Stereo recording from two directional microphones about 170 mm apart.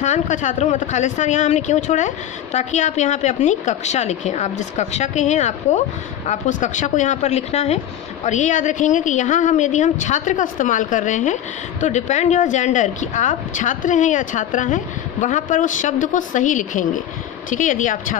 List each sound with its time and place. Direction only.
0.0 s speech: 45° left (ahead or behind)